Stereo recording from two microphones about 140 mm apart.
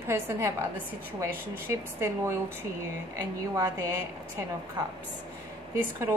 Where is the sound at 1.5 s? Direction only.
15° right (ahead or behind).